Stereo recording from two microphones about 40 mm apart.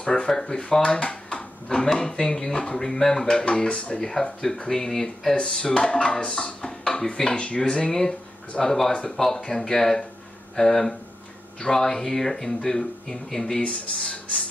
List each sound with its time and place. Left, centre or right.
0.0 s speech: left
5.3 s speech: left
6.1 s speech: centre
6.4 s speech: left
13.6 s speech: left